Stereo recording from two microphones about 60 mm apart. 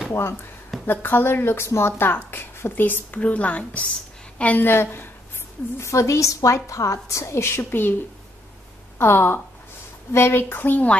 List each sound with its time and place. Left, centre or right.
0.1 s a woman's voice: left
4.6 s a woman's voice: left
5.8 s a woman's voice: left
8.9 s a woman's voice: left